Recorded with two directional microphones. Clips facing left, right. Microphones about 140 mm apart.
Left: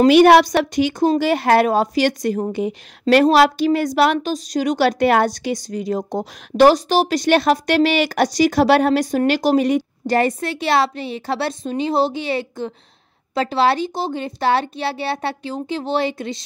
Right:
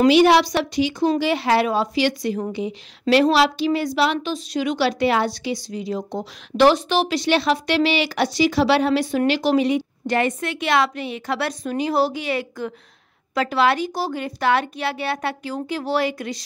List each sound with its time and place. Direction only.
0.1 s a woman's voice: 55° left (ahead or behind); by 16.4 s 25° left (ahead or behind)